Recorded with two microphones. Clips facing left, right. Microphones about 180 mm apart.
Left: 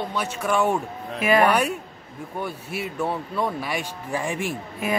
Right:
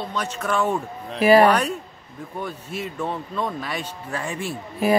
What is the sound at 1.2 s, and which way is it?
Speech, 35° right (ahead or behind).